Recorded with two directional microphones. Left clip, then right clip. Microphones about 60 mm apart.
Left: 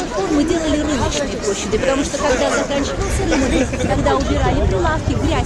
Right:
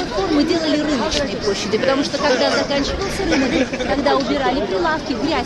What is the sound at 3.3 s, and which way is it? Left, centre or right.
Speech, left.